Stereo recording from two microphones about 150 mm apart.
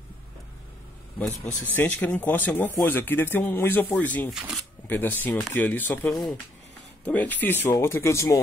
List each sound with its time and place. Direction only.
1.2 s speech: 5° left (ahead or behind)
4.3 s speech: 5° right (ahead or behind)
4.8 s speech: 10° left (ahead or behind)